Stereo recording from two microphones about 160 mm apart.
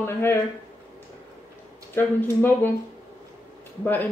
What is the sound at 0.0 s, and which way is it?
Speech, 15° left (ahead or behind).